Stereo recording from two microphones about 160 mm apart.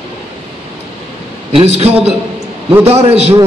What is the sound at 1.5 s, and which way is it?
A man's voice, 40° right (ahead or behind).